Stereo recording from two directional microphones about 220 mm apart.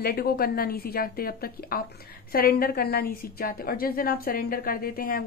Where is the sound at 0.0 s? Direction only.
45° left (ahead or behind).